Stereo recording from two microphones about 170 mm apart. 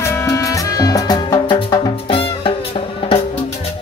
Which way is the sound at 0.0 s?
15° left (ahead or behind).